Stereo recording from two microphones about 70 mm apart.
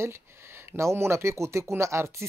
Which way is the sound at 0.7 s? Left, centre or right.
Right.